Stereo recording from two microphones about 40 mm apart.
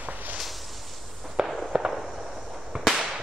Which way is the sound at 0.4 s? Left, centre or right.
Centre.